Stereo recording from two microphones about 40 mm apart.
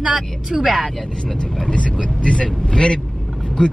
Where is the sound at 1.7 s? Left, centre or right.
Left.